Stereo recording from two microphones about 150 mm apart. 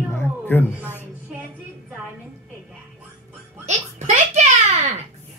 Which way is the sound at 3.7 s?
50° right (ahead or behind).